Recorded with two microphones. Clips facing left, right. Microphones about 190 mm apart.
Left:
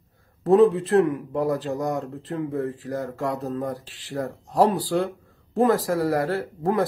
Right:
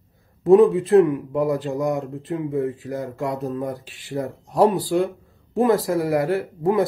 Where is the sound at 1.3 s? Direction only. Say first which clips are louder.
Right 2 dB; 10° right (ahead or behind).